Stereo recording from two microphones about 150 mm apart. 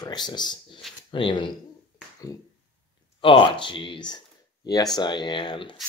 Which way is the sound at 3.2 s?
35° left (ahead or behind).